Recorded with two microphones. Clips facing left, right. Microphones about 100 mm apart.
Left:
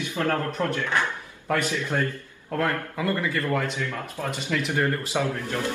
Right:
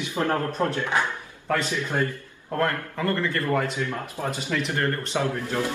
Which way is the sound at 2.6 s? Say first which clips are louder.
Right 1 dB; 10° left (ahead or behind).